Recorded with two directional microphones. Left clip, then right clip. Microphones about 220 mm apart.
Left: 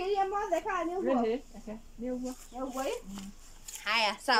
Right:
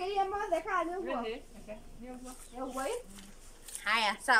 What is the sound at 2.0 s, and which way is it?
Speech, 30° left (ahead or behind).